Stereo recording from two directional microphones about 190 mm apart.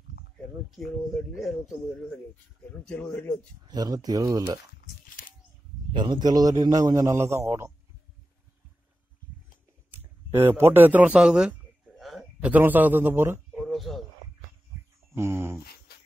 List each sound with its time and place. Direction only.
1.1 s speech: centre (ahead or behind)
2.8 s speech: 5° left (ahead or behind)
3.6 s a man's voice: 20° right (ahead or behind)
5.9 s a man's voice: 25° right (ahead or behind)
9.8 s a man's voice: 10° right (ahead or behind)
13.6 s a sound: centre (ahead or behind)
15.1 s speech: 15° right (ahead or behind)
15.9 s dog: 55° left (ahead or behind)